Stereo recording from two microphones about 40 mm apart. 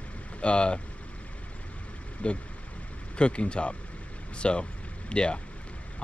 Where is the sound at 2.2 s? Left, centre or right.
Left.